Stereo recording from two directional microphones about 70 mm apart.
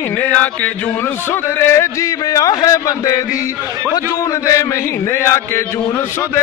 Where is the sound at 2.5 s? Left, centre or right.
Left.